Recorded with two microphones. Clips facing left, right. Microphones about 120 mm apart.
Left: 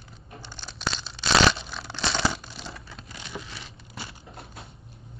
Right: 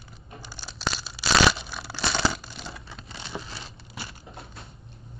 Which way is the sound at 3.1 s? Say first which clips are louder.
Right 2 dB; 30° right (ahead or behind).